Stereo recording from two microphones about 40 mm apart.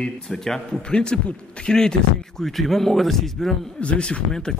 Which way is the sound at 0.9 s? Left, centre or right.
Left.